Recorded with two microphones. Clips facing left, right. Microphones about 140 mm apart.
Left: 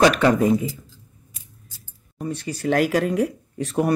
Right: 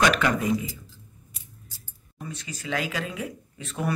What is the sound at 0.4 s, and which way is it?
Speech, 45° left (ahead or behind).